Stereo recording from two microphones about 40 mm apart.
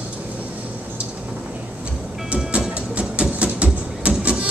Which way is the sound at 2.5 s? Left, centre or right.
Right.